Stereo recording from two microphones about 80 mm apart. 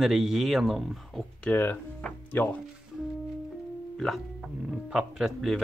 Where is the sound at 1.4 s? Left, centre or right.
Left.